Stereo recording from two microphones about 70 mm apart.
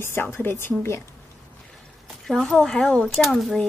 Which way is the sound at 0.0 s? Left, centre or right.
Left.